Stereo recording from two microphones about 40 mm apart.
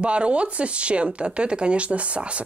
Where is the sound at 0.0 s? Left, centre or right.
Right.